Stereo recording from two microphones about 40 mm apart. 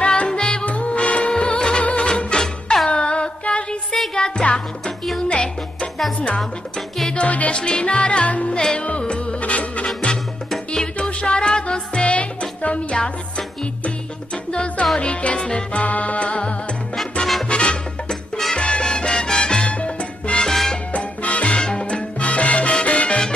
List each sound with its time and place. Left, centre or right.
0.0 s music: left
0.7 s music: left
7.2 s music: left
7.5 s music: left
8.5 s music: centre; by 9.8 s left
10.7 s music: left
15.8 s music: left
20.4 s salsa music: centre
20.9 s salsa music: left
21.5 s music: left
21.8 s salsa music: left